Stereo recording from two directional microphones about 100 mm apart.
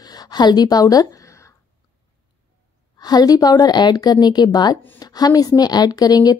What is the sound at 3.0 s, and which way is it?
A woman's voice, 40° left (ahead or behind).